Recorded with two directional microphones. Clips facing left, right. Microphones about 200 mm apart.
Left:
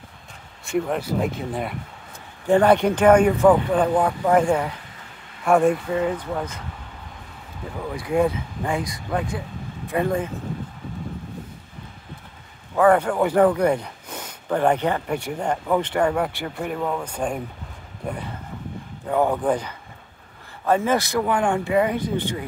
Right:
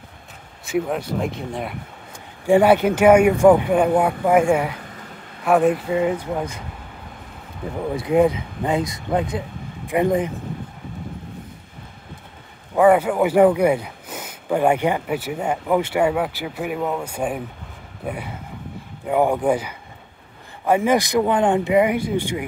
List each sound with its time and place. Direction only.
0.7 s speech: centre (ahead or behind)
2.4 s speech: 10° right (ahead or behind)
5.9 s speech: 15° right (ahead or behind)
7.9 s speech: 20° right (ahead or behind)
12.7 s speech: 10° right (ahead or behind)